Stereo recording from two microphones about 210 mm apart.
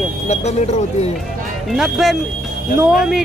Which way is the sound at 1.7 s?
Centre (ahead or behind).